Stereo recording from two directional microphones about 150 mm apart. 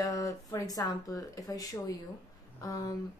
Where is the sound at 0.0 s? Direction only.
20° left (ahead or behind).